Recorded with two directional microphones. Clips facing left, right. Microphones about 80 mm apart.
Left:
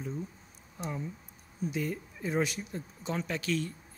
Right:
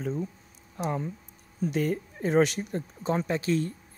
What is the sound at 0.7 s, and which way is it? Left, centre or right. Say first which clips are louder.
Speech: right 7 dB; right.